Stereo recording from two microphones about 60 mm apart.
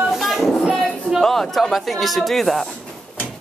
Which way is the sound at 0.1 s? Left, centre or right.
Centre.